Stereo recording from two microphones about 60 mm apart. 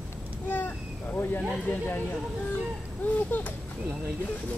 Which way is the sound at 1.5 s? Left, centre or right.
Left.